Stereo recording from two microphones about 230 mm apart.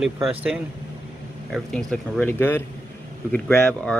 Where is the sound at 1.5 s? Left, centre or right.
Centre.